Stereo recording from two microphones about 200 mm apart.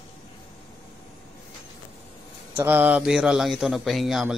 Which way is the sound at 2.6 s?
10° right (ahead or behind).